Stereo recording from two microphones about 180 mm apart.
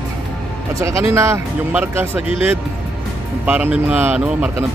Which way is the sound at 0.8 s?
15° right (ahead or behind).